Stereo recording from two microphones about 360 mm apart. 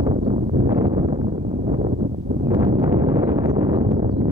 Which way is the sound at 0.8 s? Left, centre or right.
Centre.